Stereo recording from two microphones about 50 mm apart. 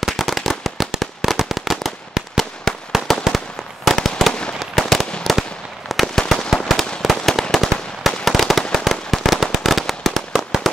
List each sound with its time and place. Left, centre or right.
0.0 s firecracker: centre
3.3 s fireworks: centre
4.3 s fireworks: centre
4.6 s fireworks: centre
7.5 s firecracker: centre
8.7 s fireworks: centre
10.3 s firecracker: centre